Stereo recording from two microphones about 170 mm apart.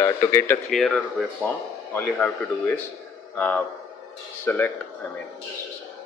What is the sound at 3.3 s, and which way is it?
A man's voice, 10° left (ahead or behind).